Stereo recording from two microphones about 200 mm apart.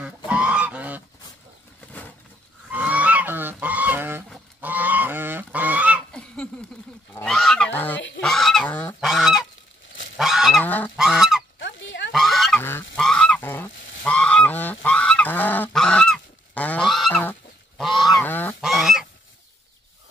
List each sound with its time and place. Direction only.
0.0 s goose: 5° right (ahead or behind)
2.7 s goose: 5° right (ahead or behind)
6.1 s a sound: 5° left (ahead or behind)
7.2 s goose: 5° left (ahead or behind)
9.1 s goose: centre (ahead or behind)
10.6 s goose: 10° left (ahead or behind)
11.0 s goose: centre (ahead or behind)
11.6 s dog: 65° left (ahead or behind)
12.1 s goose: centre (ahead or behind)
18.6 s goose: centre (ahead or behind)